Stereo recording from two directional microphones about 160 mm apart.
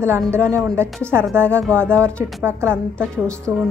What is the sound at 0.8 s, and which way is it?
Speech, centre (ahead or behind).